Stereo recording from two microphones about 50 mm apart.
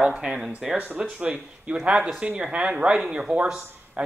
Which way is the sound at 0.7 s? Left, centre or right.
Right.